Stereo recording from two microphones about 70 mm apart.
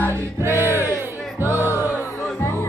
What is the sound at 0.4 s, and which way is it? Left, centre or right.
Music, right.